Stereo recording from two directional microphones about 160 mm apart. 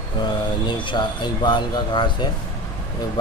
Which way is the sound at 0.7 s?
30° left (ahead or behind).